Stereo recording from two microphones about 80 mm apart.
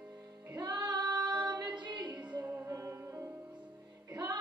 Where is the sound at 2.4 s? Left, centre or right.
Right.